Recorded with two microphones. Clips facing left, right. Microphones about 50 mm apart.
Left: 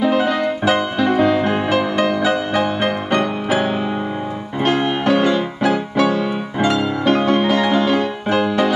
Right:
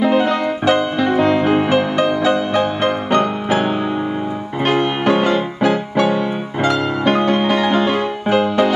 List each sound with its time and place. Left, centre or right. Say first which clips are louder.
0.2 s music: right 1 dB; centre
4.6 s music: right 1 dB; centre
5.9 s music: even; right
6.6 s music: right 1 dB; centre
7.2 s music: even; centre